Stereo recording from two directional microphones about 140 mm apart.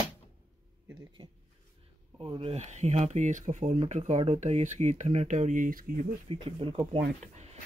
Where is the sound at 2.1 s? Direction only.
40° right (ahead or behind); by 6.0 s 90° right.